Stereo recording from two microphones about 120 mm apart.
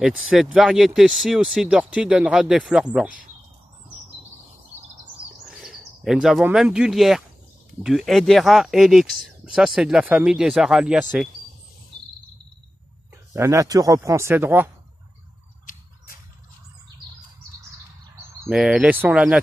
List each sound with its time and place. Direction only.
0.0 s speech: 5° right (ahead or behind)
5.5 s speech: centre (ahead or behind)
13.3 s speech: 25° right (ahead or behind)
18.5 s speech: 5° right (ahead or behind)